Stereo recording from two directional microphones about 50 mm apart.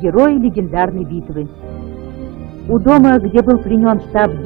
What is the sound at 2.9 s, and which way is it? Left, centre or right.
Speech, left.